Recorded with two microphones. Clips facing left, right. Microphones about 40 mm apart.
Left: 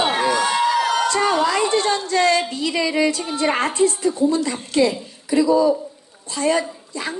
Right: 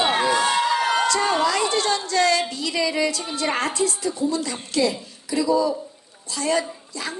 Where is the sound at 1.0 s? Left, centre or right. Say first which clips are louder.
Left 2 dB; left.